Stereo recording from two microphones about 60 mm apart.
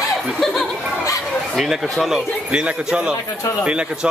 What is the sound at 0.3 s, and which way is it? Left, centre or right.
Speech, centre.